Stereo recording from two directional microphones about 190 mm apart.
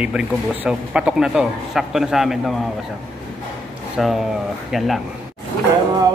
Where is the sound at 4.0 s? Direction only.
Centre (ahead or behind).